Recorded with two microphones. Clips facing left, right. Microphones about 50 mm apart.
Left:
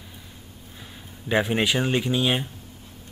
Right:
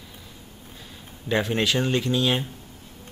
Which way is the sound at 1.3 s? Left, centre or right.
Centre.